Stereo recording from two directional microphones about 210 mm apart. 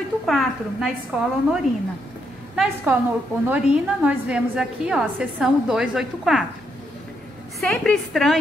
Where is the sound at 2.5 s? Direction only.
5° right (ahead or behind).